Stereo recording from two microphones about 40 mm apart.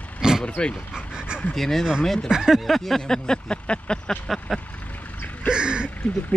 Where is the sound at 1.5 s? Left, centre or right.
Centre.